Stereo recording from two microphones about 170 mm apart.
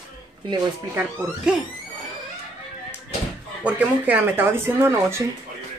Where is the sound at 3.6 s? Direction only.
10° right (ahead or behind).